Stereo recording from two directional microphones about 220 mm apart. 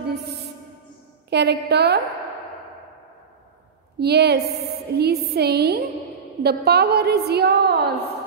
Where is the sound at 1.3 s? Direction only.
50° right (ahead or behind).